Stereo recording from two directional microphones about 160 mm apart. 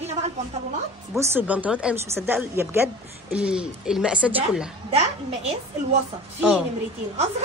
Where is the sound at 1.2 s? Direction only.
10° right (ahead or behind).